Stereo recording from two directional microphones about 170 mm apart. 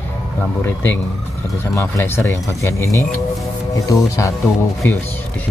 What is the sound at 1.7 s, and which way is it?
Speech, 15° left (ahead or behind).